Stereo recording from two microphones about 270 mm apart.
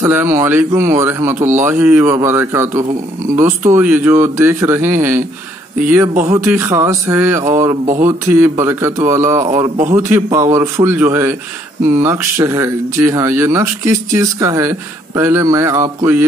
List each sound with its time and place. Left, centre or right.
0.0 s speech: centre
6.2 s speech: centre
7.8 s speech: right
8.1 s speech: centre